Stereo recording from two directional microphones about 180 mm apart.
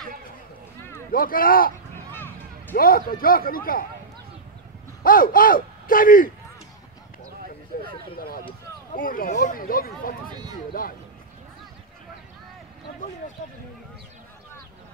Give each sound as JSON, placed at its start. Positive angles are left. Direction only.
{"t": 1.1, "sound": "speech", "side_deg": 50}
{"t": 2.7, "sound": "speech", "side_deg": 50}
{"t": 5.0, "sound": "speech", "side_deg": 50}
{"t": 7.7, "sound": "a sound", "side_deg": 50}
{"t": 8.9, "sound": "speech", "side_deg": 50}